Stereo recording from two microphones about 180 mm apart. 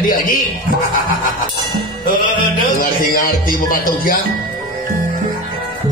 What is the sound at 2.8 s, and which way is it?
Music, 50° left (ahead or behind).